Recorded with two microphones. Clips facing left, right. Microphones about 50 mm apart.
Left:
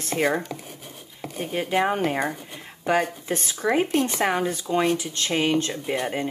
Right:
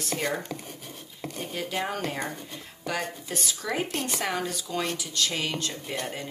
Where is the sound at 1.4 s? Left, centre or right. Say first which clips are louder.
Left 8 dB; left.